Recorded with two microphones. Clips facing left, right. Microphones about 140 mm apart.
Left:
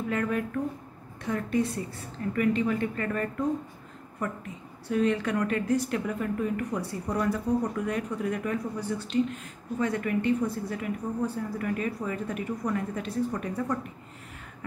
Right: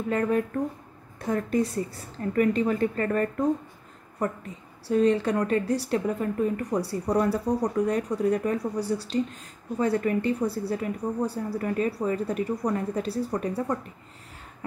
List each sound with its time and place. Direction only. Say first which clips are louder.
0.1 s a woman's voice: right 5 dB; 35° right (ahead or behind)